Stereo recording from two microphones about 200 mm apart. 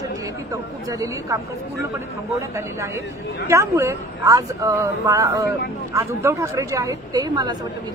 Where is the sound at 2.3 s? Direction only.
15° right (ahead or behind).